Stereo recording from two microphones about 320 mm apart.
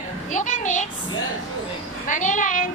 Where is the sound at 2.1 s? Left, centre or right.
Left.